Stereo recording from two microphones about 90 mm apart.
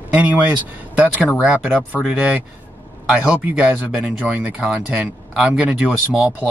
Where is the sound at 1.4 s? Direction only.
15° right (ahead or behind).